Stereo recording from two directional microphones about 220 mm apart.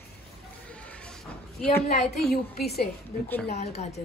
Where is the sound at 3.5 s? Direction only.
30° left (ahead or behind).